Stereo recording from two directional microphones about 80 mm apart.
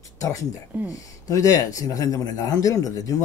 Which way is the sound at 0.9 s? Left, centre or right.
Left.